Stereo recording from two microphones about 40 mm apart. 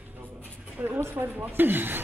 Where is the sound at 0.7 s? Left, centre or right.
Right.